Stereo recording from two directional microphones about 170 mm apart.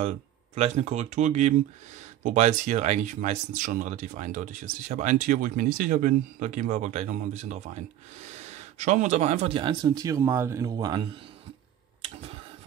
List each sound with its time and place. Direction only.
0.6 s speech: 40° right (ahead or behind)